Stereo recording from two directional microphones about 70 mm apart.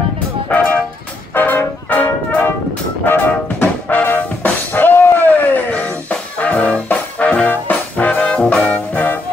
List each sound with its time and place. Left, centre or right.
0.5 s music: left
1.3 s brass instrument: left
3.1 s music: left